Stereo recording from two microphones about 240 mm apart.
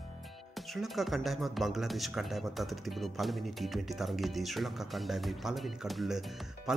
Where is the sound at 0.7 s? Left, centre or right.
Centre.